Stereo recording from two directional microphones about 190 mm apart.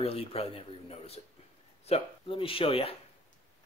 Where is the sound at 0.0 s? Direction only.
30° left (ahead or behind).